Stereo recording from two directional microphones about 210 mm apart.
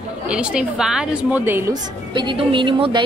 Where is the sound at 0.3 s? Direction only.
5° right (ahead or behind).